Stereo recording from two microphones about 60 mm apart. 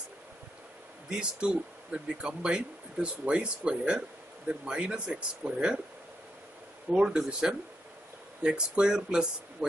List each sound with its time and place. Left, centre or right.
1.1 s speech: centre
6.9 s speech: centre